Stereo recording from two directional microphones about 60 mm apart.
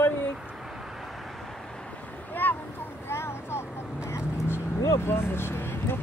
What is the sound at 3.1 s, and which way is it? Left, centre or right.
Vehicle, left.